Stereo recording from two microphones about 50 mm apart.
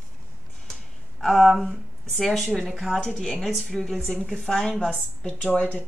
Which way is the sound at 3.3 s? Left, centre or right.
Centre.